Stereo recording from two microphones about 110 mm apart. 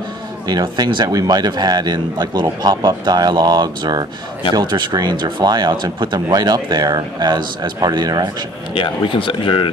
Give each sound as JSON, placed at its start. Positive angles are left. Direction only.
{"t": 0.5, "sound": "speech", "side_deg": -40}
{"t": 8.7, "sound": "speech", "side_deg": 50}